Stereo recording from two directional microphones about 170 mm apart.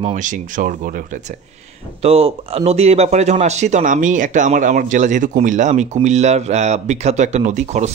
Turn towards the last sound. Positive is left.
turn(degrees=-45)  # may be behind; listen again after turning